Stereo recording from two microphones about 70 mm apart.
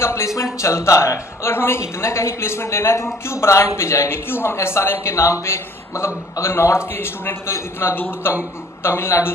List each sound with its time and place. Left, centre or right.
0.0 s a man's voice: left